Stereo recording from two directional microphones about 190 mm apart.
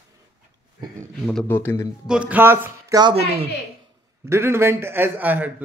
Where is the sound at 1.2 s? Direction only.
5° left (ahead or behind).